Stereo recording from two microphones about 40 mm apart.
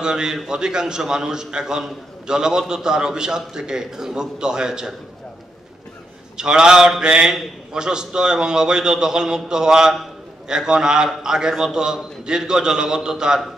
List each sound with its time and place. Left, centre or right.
0.0 s a man's voice: centre
6.3 s a man's voice: centre